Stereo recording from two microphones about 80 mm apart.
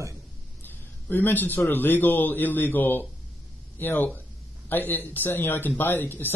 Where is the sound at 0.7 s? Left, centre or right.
Left.